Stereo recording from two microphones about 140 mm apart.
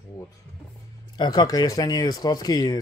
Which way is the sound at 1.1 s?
30° left (ahead or behind).